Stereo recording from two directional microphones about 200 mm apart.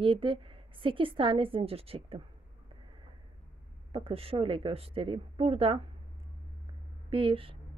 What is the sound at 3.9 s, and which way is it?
Speech, 30° right (ahead or behind).